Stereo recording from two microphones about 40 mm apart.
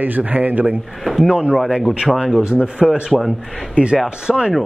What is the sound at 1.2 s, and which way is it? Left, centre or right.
Speech, right.